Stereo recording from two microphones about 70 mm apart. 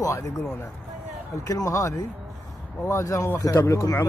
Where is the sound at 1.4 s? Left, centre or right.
Left.